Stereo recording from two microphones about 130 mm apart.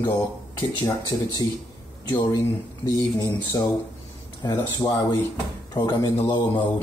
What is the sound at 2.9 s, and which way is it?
Speech, 25° left (ahead or behind).